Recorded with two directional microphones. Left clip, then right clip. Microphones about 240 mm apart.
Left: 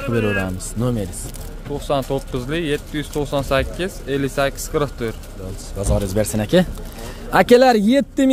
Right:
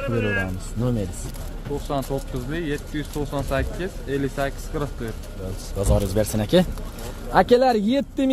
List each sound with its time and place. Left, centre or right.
0.0 s speech: left
1.9 s speech: left
5.8 s speech: centre
7.3 s speech: left